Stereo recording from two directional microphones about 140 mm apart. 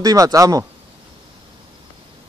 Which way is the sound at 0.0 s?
25° right (ahead or behind).